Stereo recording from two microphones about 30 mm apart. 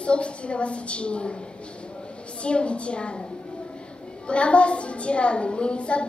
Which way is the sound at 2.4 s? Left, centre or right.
Left.